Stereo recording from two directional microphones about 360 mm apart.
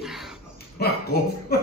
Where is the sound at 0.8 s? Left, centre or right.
Left.